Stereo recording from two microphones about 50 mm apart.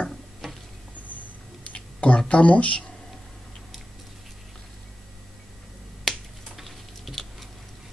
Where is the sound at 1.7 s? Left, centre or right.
Left.